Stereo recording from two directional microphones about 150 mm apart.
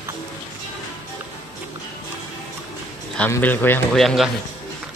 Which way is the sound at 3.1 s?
10° left (ahead or behind).